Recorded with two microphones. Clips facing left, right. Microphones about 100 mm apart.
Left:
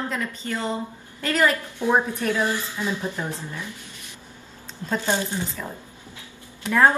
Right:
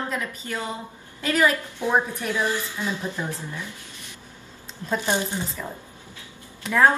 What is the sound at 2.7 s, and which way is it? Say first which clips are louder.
Speech: left 1 dB; 15° left (ahead or behind).